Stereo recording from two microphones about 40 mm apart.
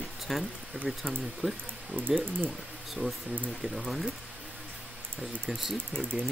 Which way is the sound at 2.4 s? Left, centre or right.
Centre.